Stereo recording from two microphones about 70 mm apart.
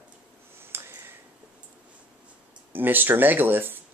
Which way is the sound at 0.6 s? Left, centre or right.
Right.